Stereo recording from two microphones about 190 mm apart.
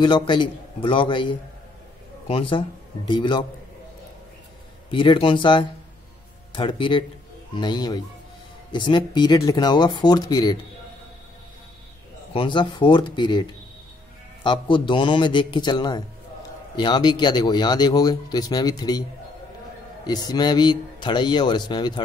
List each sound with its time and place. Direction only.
0.0 s speech: 25° left (ahead or behind)
4.9 s speech: 25° left (ahead or behind)
12.4 s speech: 25° left (ahead or behind)
20.1 s speech: 20° left (ahead or behind)